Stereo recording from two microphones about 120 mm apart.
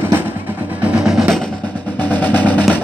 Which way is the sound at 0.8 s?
5° right (ahead or behind).